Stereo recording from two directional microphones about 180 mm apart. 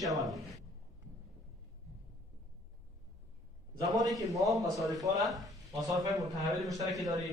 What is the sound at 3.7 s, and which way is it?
A man's voice, 20° right (ahead or behind).